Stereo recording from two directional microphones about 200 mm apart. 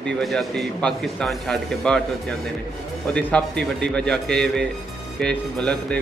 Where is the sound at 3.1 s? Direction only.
5° left (ahead or behind).